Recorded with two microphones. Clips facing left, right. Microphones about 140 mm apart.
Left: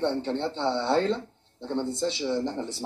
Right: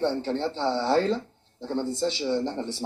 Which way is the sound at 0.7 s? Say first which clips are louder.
Right 2 dB; 35° right (ahead or behind).